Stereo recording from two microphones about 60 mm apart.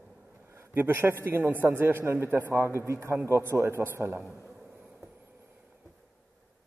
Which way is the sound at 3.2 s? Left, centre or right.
Right.